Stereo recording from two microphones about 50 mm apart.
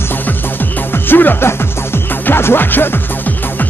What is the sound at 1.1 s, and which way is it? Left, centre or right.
Speech, left.